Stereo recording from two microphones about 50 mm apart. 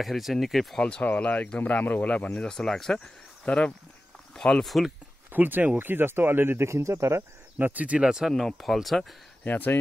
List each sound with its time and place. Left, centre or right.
0.0 s speech: centre
0.7 s speech: centre
1.0 s speech: left
2.4 s speech: centre
3.4 s speech: left
5.3 s speech: right
6.6 s speech: right
7.5 s speech: right
8.0 s speech: centre
8.5 s speech: centre
9.4 s speech: left